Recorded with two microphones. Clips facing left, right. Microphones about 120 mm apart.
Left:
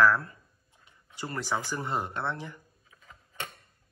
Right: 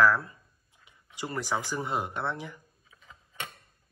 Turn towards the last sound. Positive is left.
turn(degrees=-15)  # may be behind; listen again after turning